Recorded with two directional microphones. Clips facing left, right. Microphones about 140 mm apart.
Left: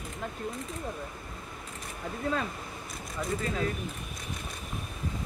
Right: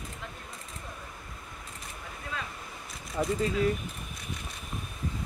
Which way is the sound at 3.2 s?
30° right (ahead or behind).